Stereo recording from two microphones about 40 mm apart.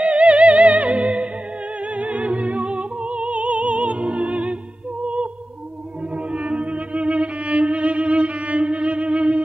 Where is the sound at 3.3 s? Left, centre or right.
Right.